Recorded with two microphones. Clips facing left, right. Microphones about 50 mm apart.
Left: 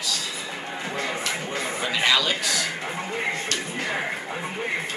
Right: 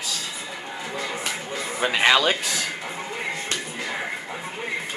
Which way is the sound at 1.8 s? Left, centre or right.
Right.